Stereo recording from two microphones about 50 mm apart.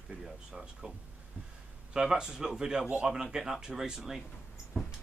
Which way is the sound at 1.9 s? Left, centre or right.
Centre.